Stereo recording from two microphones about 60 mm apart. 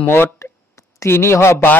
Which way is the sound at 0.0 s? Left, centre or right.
Left.